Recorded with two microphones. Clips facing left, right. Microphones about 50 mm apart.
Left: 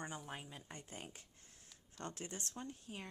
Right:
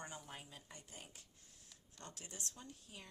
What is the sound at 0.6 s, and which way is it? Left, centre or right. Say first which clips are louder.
A woman's voice: left 5 dB; left.